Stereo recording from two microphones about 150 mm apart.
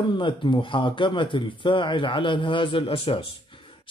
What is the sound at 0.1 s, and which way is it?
Speech, 30° left (ahead or behind).